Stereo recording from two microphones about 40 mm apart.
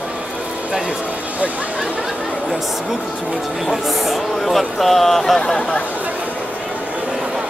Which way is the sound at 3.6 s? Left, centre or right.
Centre.